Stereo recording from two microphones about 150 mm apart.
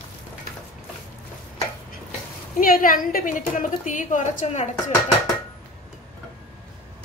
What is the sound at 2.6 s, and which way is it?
A woman's voice, 70° left (ahead or behind).